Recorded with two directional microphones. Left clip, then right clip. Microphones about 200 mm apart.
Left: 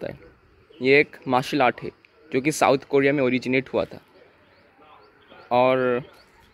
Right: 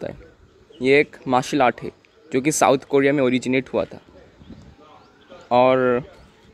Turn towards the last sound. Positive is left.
turn(degrees=-10)  # may be behind; listen again after turning